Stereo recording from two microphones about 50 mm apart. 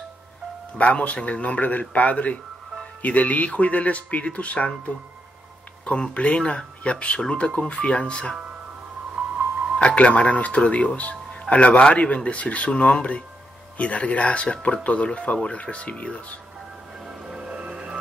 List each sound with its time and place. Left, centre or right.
0.7 s speech: left
9.2 s music: centre
9.8 s speech: left
17.3 s music: centre